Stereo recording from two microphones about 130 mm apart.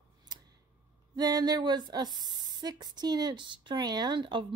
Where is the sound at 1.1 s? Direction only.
30° right (ahead or behind).